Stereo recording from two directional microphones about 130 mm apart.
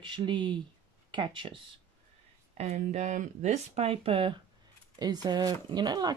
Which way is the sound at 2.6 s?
65° right (ahead or behind).